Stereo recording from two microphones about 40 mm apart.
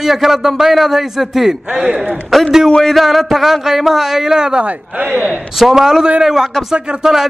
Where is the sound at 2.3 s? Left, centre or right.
Centre.